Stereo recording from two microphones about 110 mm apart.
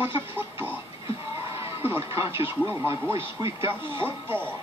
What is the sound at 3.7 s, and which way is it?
Speech, 20° right (ahead or behind).